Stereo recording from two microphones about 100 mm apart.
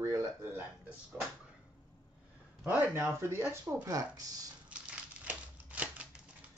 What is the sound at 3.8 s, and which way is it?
Speech, 35° right (ahead or behind).